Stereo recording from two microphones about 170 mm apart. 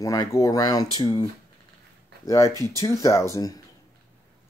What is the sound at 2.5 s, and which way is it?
Speech, 20° right (ahead or behind).